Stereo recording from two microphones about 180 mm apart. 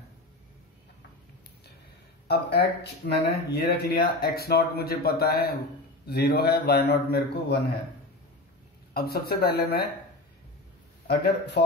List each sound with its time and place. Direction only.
2.2 s speech: 65° left (ahead or behind)
8.9 s speech: 60° left (ahead or behind)